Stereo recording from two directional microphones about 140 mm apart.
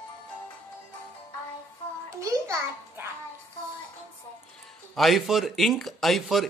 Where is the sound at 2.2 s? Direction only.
20° right (ahead or behind).